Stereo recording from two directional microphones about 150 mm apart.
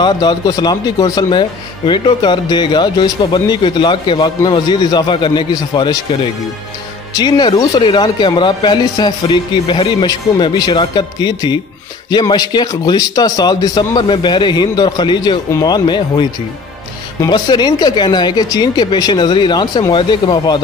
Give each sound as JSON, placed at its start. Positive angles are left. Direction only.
{"t": 0.0, "sound": "speech", "side_deg": 30}
{"t": 7.2, "sound": "speech", "side_deg": 30}